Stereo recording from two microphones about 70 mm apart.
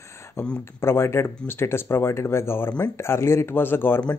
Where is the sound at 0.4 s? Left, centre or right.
Left.